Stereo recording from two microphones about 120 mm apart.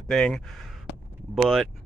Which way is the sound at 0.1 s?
5° left (ahead or behind).